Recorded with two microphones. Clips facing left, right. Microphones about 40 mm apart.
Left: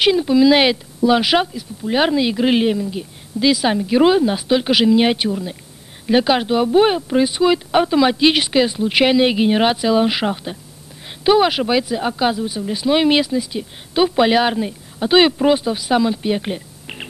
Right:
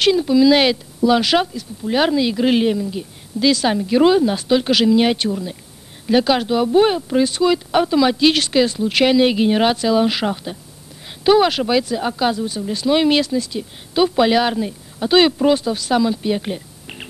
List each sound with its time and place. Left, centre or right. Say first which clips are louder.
0.0 s speech: even; centre